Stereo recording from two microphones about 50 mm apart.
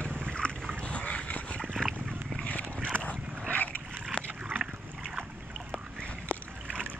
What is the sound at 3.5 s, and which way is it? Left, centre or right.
Boat, left.